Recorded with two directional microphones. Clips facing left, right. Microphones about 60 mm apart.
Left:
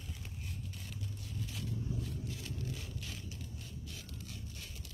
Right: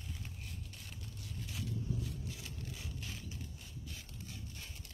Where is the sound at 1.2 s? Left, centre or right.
Centre.